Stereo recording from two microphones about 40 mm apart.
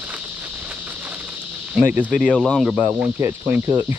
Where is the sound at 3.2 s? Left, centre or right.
Right.